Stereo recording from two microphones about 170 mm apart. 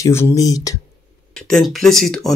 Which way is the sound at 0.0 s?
15° left (ahead or behind).